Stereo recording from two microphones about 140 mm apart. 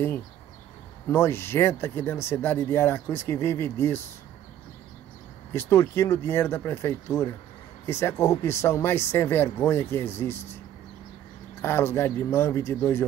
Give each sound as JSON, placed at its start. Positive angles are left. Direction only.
{"t": 1.0, "sound": "speech", "side_deg": 20}
{"t": 5.5, "sound": "speech", "side_deg": 20}
{"t": 11.6, "sound": "speech", "side_deg": 15}